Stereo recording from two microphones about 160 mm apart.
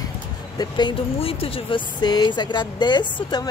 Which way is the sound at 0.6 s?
25° left (ahead or behind).